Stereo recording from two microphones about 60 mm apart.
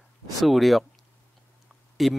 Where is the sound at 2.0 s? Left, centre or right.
Centre.